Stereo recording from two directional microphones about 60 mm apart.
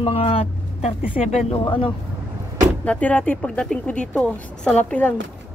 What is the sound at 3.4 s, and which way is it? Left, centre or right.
A woman's voice, centre.